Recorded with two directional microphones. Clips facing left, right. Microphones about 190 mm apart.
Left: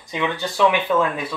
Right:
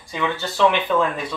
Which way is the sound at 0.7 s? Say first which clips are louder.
Even; 5° left (ahead or behind).